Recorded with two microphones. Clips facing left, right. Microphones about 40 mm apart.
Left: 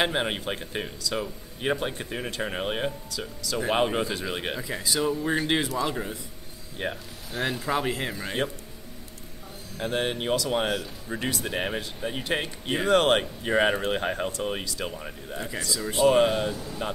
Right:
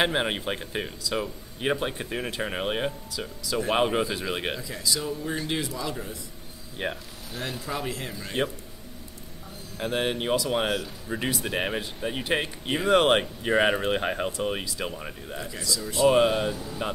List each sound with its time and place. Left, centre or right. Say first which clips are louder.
0.0 s speech: right 1 dB; centre
4.6 s speech: left 2 dB; left
6.8 s speech: even; centre
7.8 s speech: left 4 dB; left
9.8 s speech: right 1 dB; centre
15.4 s speech: left 2 dB; left
16.1 s speech: right 1 dB; centre